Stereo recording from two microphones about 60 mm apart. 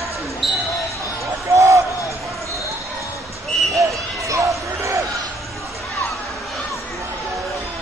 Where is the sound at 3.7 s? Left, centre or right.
Right.